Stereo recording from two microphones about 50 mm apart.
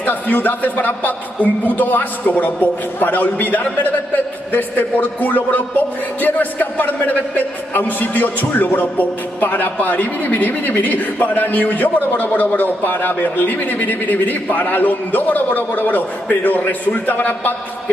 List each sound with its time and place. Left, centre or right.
0.0 s a man's voice: left